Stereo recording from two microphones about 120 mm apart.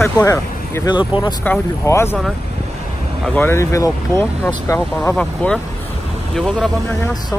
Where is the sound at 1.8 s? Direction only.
25° left (ahead or behind).